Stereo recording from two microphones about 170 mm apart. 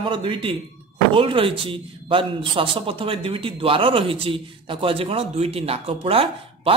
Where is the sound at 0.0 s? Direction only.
30° right (ahead or behind).